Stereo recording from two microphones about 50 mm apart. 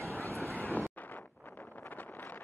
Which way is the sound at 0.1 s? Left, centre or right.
Right.